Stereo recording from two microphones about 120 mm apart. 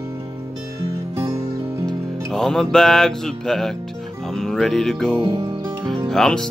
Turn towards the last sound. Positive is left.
turn(degrees=5)  # may be behind; listen again after turning